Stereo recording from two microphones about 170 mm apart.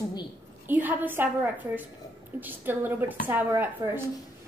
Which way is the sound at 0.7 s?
10° right (ahead or behind).